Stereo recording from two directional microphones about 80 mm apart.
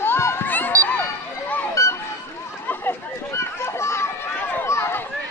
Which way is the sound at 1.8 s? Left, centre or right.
Left.